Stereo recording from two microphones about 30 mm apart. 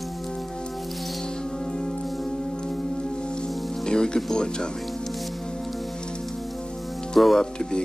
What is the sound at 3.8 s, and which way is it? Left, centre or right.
Music, left.